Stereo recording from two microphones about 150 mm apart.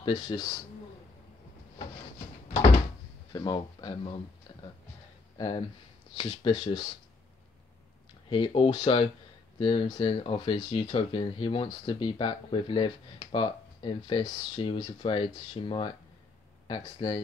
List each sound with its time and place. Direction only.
0.0 s speech: 30° left (ahead or behind)
3.3 s speech: 25° left (ahead or behind)
6.1 s speech: 30° left (ahead or behind)
8.3 s speech: 30° left (ahead or behind)